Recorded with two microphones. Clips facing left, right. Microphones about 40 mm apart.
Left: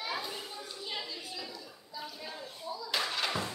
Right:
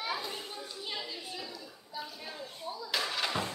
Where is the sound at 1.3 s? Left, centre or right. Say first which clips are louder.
Right 1 dB; right.